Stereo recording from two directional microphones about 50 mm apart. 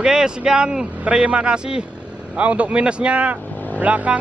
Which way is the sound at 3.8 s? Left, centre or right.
Right.